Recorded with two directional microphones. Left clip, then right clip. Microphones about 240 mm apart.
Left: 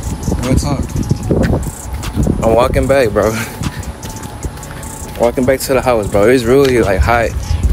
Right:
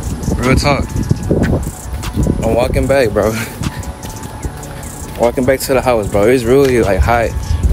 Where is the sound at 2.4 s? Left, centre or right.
Left.